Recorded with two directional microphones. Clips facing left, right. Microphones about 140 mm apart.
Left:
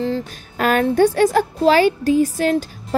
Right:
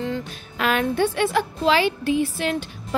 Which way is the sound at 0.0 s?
40° left (ahead or behind).